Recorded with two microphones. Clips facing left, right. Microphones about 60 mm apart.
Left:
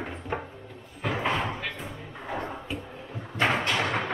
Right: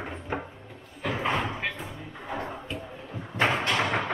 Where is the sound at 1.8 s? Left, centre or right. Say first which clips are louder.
Even; centre.